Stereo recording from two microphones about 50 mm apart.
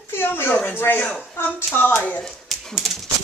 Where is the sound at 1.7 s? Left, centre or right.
Left.